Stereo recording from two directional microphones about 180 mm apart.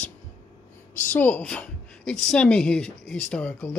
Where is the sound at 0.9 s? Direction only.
10° left (ahead or behind).